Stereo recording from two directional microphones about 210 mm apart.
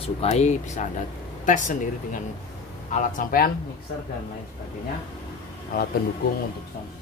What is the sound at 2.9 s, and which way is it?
Speech, 40° left (ahead or behind).